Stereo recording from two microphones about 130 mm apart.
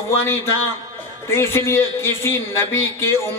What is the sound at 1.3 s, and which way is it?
A man's voice, 20° left (ahead or behind).